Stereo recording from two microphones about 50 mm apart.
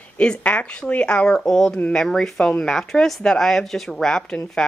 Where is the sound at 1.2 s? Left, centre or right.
Centre.